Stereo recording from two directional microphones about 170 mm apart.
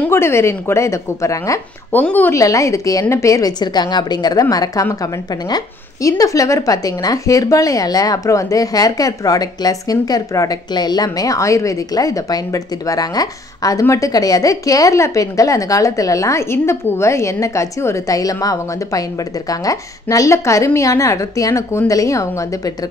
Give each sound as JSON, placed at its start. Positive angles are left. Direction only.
{"t": 0.0, "sound": "speech", "side_deg": 15}